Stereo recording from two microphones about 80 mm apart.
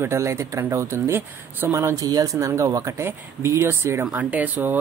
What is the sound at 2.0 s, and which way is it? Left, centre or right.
Speech, right.